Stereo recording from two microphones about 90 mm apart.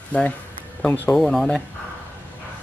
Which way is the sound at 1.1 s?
5° left (ahead or behind).